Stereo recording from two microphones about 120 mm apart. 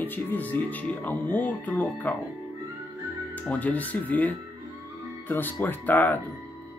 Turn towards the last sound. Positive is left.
turn(degrees=15)  # may be behind; listen again after turning